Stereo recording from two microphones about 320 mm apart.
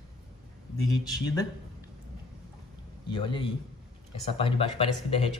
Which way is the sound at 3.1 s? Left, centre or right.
Centre.